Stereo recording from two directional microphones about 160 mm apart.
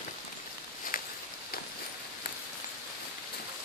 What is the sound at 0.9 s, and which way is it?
Walk, 60° left (ahead or behind).